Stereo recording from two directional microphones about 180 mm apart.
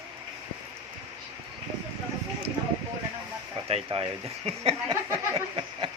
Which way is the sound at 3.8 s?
30° right (ahead or behind).